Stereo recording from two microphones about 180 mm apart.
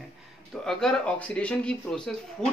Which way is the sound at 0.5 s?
Centre (ahead or behind).